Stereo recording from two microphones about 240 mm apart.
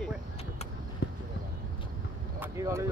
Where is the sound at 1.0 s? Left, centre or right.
Left.